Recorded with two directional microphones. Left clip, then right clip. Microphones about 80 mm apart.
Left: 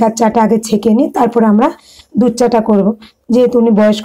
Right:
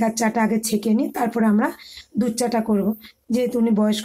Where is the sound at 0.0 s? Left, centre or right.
Left.